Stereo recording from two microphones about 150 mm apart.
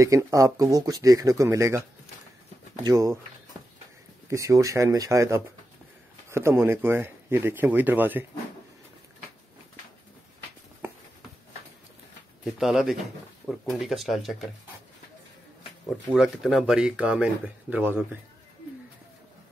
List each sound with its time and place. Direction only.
0.0 s speech: 20° right (ahead or behind)
2.8 s speech: 20° right (ahead or behind)
4.3 s speech: 20° right (ahead or behind)
12.4 s speech: 5° right (ahead or behind)
16.1 s speech: 5° right (ahead or behind)